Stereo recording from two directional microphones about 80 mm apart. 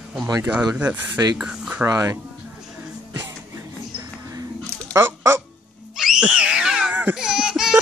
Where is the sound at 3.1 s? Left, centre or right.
Right.